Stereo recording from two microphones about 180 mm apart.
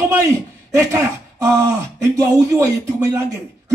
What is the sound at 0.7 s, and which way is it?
A man's voice, 15° right (ahead or behind).